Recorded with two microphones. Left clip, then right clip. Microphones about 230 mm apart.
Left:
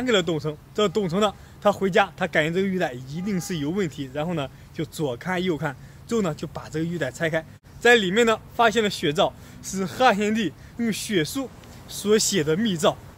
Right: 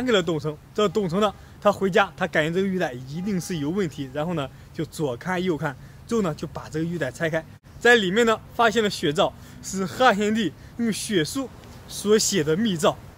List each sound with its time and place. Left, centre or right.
0.0 s speech: centre